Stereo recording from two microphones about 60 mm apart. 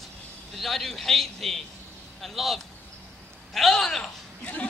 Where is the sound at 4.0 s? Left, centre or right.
Left.